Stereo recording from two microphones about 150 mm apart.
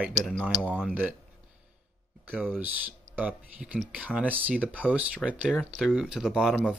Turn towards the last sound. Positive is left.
turn(degrees=-5)  # may be behind; listen again after turning